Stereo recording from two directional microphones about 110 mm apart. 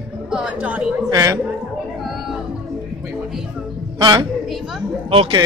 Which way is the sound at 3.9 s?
45° right (ahead or behind).